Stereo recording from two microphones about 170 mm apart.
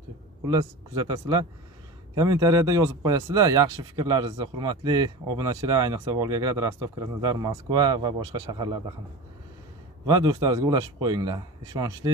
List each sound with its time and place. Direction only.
0.5 s speech: 20° right (ahead or behind)
10.0 s speech: 25° right (ahead or behind)